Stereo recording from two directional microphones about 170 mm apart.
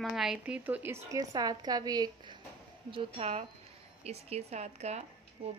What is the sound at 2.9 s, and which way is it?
Speech, 35° right (ahead or behind).